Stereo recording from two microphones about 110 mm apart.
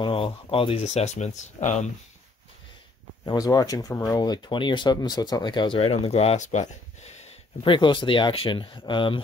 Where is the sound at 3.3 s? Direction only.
35° left (ahead or behind).